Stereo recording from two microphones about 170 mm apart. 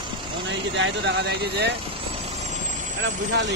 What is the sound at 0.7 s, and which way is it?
Speech, 90° right.